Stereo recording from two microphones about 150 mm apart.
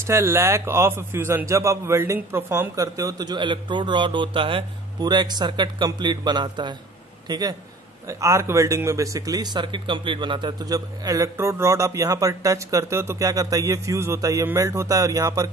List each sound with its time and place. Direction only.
0.0 s speech: 15° right (ahead or behind)